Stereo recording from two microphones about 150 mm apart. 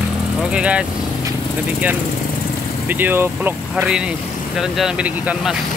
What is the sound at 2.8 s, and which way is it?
Speech, 10° right (ahead or behind).